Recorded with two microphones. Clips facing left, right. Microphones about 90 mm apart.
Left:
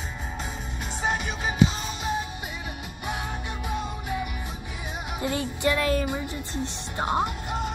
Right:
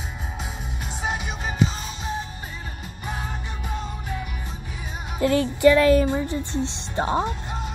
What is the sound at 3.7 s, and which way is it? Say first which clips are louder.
Music: left 1 dB; 5° left (ahead or behind).